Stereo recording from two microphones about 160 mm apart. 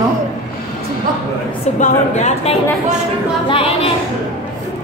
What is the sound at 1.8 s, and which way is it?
Speech, 45° left (ahead or behind).